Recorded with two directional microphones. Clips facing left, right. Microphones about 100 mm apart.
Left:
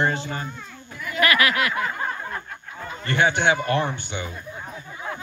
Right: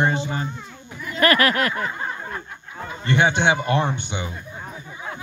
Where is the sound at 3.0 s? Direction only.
20° right (ahead or behind).